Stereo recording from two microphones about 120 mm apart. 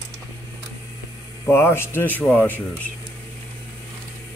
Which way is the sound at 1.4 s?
20° left (ahead or behind).